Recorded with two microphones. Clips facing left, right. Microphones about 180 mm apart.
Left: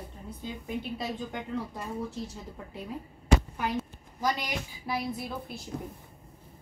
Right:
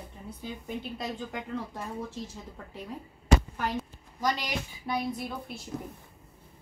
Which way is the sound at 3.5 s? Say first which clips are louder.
Left 1 dB; 5° left (ahead or behind).